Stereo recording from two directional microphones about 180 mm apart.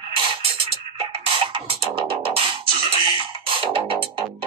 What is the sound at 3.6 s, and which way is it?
Music, 30° right (ahead or behind).